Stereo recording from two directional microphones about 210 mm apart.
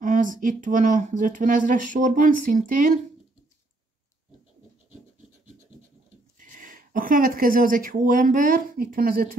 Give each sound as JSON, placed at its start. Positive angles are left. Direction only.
{"t": 0.0, "sound": "speech", "side_deg": -40}
{"t": 6.3, "sound": "speech", "side_deg": -40}